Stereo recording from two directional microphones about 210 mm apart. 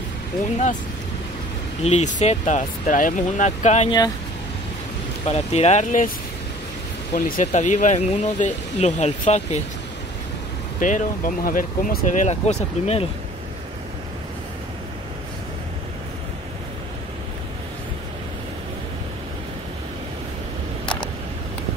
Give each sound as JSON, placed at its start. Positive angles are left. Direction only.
{"t": 1.9, "sound": "speech", "side_deg": 35}
{"t": 5.2, "sound": "speech", "side_deg": 30}
{"t": 7.2, "sound": "speech", "side_deg": 40}
{"t": 10.8, "sound": "speech", "side_deg": 35}